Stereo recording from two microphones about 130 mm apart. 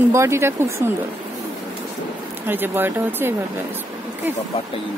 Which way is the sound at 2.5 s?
15° right (ahead or behind).